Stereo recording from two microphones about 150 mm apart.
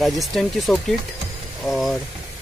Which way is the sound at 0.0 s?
Centre (ahead or behind).